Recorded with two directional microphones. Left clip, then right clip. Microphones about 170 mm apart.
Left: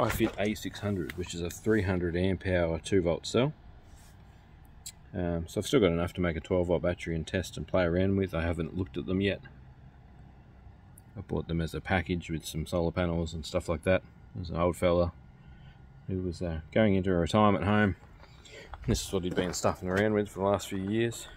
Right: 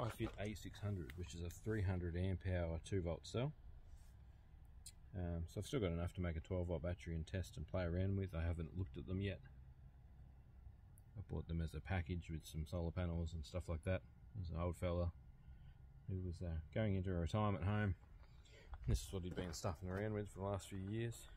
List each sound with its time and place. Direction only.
0.0 s speech: centre (ahead or behind)
0.6 s speech: 15° left (ahead or behind)
5.1 s speech: 15° left (ahead or behind)
11.1 s speech: centre (ahead or behind)
16.1 s speech: 25° left (ahead or behind)
18.5 s a sound: 10° left (ahead or behind)
18.9 s speech: 15° right (ahead or behind)